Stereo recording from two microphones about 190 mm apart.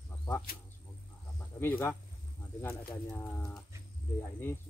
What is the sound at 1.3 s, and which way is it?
Speech, 10° left (ahead or behind).